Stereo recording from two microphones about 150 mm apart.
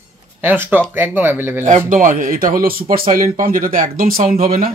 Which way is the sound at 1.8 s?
60° right (ahead or behind).